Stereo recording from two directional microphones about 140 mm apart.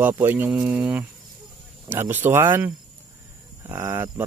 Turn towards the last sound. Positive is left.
turn(degrees=-20)  # may be behind; listen again after turning